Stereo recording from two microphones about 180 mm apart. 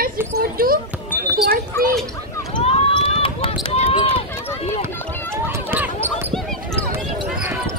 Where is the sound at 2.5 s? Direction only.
30° left (ahead or behind).